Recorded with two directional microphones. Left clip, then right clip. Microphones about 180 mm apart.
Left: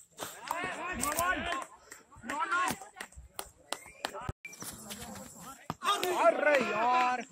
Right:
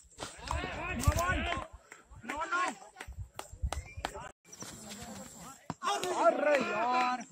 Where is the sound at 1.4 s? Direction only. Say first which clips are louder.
Even; 60° left (ahead or behind).